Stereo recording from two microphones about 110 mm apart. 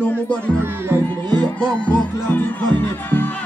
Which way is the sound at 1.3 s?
10° left (ahead or behind).